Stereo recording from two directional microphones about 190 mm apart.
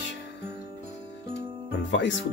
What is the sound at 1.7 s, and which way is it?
Speech, 75° left (ahead or behind).